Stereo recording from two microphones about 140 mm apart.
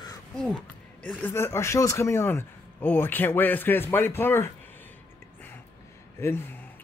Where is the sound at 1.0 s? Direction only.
15° left (ahead or behind).